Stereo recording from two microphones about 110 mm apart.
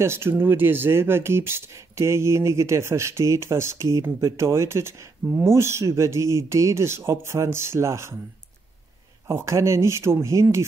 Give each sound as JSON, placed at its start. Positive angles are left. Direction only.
{"t": 0.0, "sound": "speech", "side_deg": -20}
{"t": 9.3, "sound": "speech", "side_deg": -25}